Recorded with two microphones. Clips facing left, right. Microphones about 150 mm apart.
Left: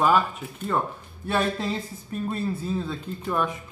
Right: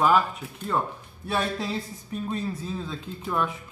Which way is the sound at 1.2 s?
Centre (ahead or behind).